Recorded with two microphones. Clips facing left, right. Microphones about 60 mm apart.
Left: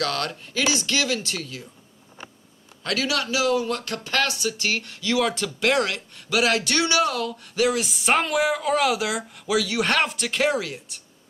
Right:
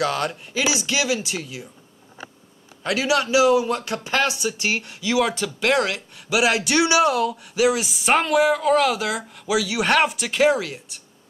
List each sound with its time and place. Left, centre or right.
0.0 s speech: centre
2.8 s speech: centre